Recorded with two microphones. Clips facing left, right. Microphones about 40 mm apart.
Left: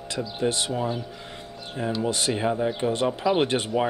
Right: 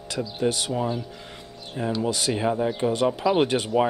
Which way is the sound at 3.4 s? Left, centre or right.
Left.